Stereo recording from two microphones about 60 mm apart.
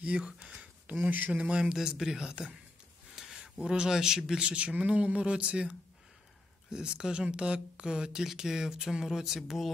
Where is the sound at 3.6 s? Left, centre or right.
Centre.